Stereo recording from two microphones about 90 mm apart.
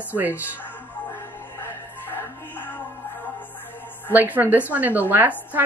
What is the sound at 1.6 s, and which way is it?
Music, 25° left (ahead or behind).